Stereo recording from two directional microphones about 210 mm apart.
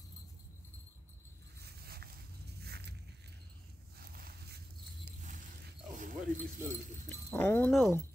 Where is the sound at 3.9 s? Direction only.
45° right (ahead or behind).